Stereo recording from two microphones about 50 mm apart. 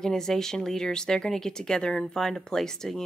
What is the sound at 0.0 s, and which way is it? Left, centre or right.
A woman's voice, centre.